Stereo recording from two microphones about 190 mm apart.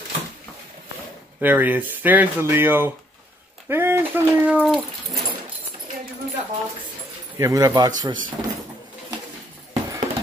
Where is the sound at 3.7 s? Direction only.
10° right (ahead or behind).